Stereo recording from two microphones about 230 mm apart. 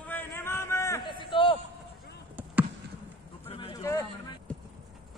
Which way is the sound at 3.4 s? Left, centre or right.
Left.